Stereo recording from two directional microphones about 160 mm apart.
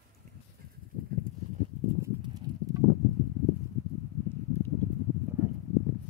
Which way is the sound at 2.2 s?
25° right (ahead or behind).